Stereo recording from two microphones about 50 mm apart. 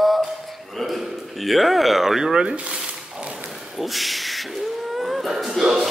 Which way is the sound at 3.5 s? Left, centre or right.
Centre.